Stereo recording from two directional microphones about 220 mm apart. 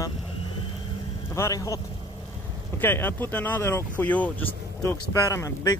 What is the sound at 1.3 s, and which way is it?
Speech, 15° left (ahead or behind).